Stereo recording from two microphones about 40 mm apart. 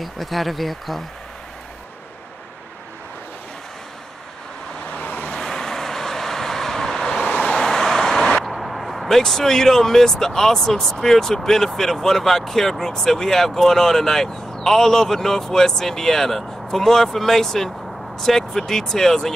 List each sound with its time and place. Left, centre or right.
0.0 s speech: centre
4.9 s vehicle: left
5.3 s vehicle: centre
8.5 s speech: centre